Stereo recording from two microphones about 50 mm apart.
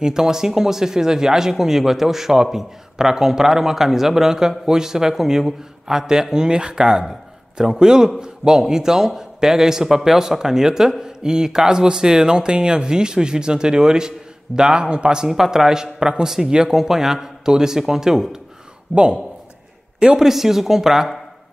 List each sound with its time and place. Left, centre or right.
0.0 s a man's voice: centre
18.9 s a man's voice: right